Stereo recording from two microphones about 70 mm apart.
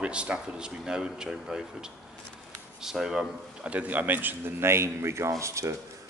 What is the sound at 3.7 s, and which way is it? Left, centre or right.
A man's voice, right.